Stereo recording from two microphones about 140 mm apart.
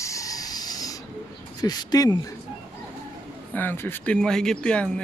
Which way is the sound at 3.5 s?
15° left (ahead or behind).